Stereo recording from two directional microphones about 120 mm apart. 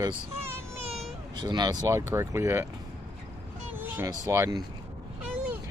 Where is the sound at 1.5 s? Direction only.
35° right (ahead or behind).